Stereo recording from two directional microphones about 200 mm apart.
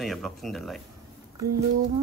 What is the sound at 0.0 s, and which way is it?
Speech, centre (ahead or behind).